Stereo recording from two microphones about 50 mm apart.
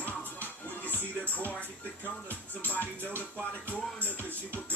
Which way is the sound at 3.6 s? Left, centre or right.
Right.